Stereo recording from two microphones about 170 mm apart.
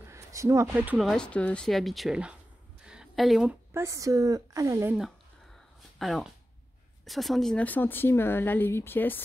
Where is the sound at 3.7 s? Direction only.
15° right (ahead or behind).